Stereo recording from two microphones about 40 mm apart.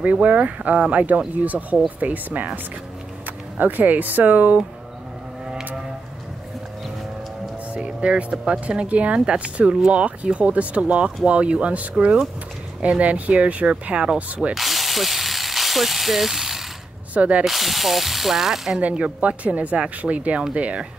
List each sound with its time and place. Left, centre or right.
0.0 s speech: right
7.7 s speech: right
14.5 s mechanisms: centre
17.1 s speech: right
17.5 s ratchet: centre
19.2 s speech: right